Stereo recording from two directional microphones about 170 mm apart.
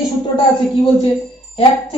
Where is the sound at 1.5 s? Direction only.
30° left (ahead or behind).